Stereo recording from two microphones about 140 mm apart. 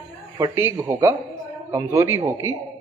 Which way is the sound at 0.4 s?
20° right (ahead or behind).